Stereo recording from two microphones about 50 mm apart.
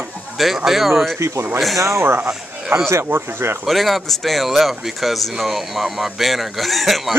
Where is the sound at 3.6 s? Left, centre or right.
Centre.